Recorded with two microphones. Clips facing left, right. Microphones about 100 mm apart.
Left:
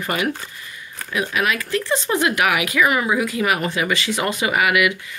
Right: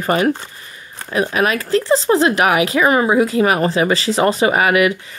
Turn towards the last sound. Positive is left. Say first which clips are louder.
# right 4 dB
turn(degrees=-35)  # may be behind; listen again after turning